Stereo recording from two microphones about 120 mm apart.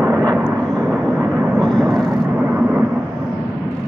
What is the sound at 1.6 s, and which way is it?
Vehicle, 5° left (ahead or behind).